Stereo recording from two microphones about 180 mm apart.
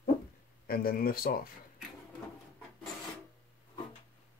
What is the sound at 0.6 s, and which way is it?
Speech, 55° left (ahead or behind).